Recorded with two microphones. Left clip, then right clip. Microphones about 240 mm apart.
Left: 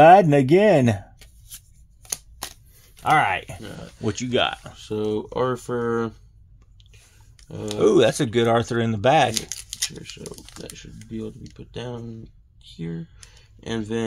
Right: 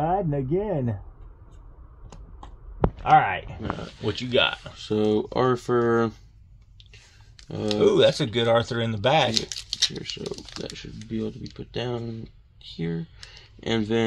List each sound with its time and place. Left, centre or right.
0.0 s speech: left
3.0 s speech: left
4.0 s speech: left
4.7 s speech: right
7.8 s speech: left
9.3 s speech: left
10.1 s speech: right